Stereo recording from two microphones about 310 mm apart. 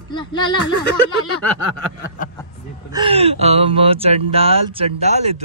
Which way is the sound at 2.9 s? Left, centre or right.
Centre.